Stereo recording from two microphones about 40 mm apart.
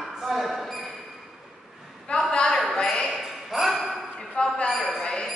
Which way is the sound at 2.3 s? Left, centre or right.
Centre.